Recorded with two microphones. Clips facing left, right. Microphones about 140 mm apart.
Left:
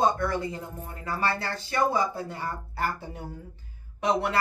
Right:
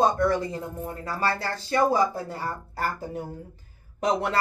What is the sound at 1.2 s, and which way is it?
A woman's voice, 40° right (ahead or behind).